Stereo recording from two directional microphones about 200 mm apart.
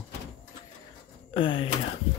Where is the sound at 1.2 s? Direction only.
25° left (ahead or behind).